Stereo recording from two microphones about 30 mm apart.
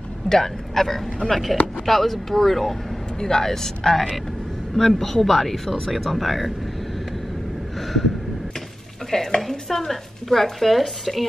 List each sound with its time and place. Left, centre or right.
0.3 s speech: centre
3.2 s speech: centre
7.7 s a sound: centre
9.4 s speech: centre